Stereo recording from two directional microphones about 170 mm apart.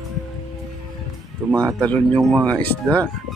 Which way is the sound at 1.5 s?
20° right (ahead or behind).